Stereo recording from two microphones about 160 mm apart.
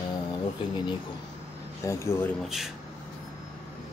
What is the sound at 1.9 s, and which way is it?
Speech, 15° left (ahead or behind).